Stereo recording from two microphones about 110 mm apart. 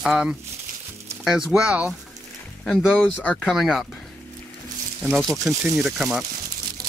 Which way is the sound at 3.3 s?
Centre (ahead or behind).